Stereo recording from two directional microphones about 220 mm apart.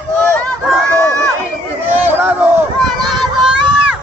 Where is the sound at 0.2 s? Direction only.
5° left (ahead or behind).